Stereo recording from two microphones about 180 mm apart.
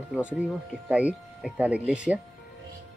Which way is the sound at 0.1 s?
5° right (ahead or behind).